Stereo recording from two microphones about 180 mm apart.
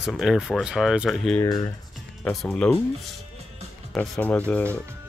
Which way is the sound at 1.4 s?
20° left (ahead or behind).